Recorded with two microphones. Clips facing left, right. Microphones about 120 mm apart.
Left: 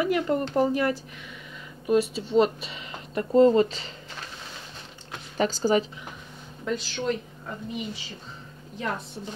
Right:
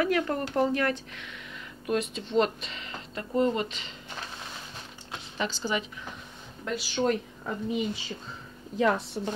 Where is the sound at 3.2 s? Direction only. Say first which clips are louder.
Left 8 dB; 30° left (ahead or behind).